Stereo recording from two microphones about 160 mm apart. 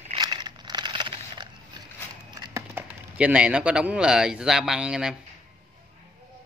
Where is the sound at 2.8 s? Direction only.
5° right (ahead or behind).